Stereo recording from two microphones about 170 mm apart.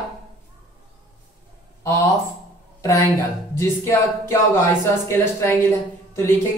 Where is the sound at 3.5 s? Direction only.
15° left (ahead or behind).